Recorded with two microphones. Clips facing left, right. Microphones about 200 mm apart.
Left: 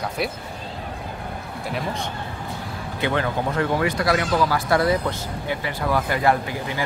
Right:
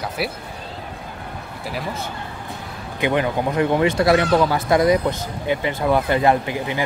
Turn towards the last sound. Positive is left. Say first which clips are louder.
# right 4 dB
turn(degrees=-20)  # may be behind; listen again after turning